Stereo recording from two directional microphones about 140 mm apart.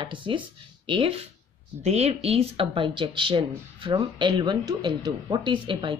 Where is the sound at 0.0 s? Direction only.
35° right (ahead or behind).